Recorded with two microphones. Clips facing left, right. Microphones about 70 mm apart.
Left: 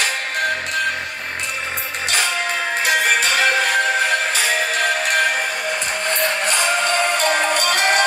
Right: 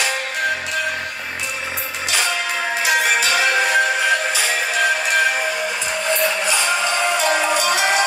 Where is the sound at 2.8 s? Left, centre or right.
Left.